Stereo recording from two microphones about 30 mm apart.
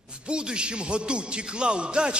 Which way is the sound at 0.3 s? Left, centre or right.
Right.